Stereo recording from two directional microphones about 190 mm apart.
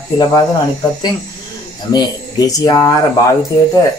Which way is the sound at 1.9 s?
20° left (ahead or behind).